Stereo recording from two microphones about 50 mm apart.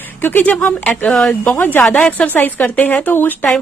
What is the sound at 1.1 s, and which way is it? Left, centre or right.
Speech, centre.